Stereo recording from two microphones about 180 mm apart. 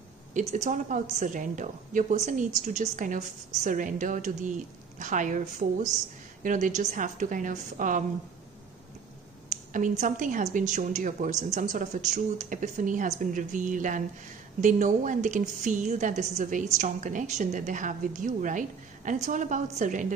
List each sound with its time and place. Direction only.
0.3 s a woman's voice: 40° right (ahead or behind)
9.5 s a woman's voice: 45° right (ahead or behind)